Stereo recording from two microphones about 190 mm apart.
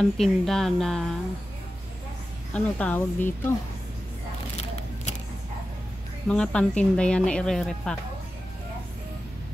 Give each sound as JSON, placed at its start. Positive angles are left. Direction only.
{"t": 0.2, "sound": "speech", "side_deg": 0}
{"t": 2.5, "sound": "speech", "side_deg": 10}
{"t": 4.6, "sound": "a sound", "side_deg": 35}
{"t": 6.2, "sound": "speech", "side_deg": 5}